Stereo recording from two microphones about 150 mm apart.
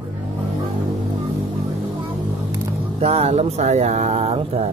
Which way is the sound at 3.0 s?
40° right (ahead or behind).